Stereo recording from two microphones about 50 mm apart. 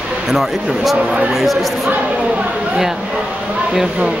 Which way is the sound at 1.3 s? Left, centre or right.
Centre.